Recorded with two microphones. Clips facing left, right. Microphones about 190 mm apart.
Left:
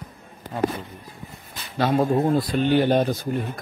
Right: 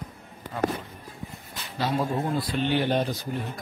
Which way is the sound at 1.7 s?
55° left (ahead or behind).